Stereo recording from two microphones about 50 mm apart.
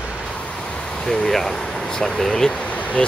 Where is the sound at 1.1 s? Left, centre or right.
Centre.